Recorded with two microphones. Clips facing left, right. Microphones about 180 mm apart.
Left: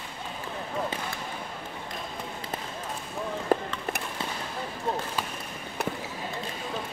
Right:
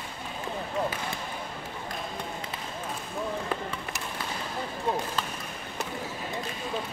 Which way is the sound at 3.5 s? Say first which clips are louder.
Left 8 dB; 40° left (ahead or behind).